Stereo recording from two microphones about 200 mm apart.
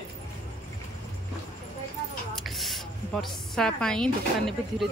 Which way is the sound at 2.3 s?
Centre (ahead or behind).